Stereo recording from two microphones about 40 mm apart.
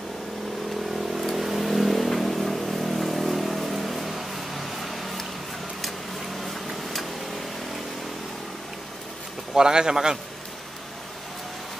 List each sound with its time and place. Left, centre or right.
1.3 s vehicle: centre
9.5 s a man's voice: centre